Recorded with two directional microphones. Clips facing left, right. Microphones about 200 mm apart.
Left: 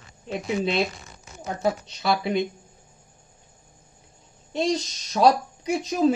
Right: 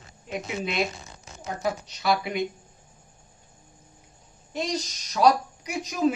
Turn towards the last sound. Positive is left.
turn(degrees=25)  # may be behind; listen again after turning